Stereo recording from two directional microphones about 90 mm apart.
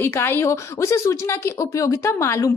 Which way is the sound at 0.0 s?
25° left (ahead or behind).